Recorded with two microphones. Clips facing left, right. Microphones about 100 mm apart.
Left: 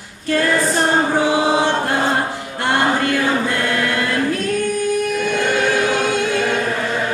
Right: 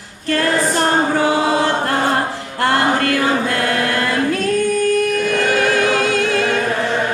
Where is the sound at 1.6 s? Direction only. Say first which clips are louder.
Right 1 dB; 45° right (ahead or behind).